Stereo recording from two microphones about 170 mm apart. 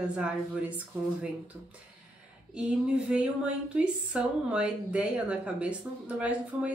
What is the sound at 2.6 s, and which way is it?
A woman's voice, 5° right (ahead or behind).